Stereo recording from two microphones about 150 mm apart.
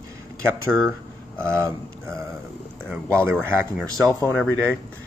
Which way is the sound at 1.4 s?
20° right (ahead or behind).